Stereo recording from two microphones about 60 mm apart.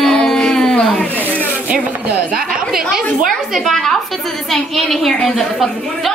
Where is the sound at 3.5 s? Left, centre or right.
Centre.